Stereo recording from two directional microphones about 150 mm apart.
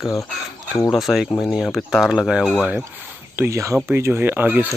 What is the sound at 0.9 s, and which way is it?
Speech, centre (ahead or behind).